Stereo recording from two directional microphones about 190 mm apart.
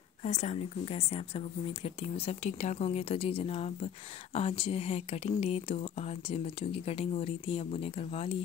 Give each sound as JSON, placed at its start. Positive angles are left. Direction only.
{"t": 0.2, "sound": "a woman's voice", "side_deg": 35}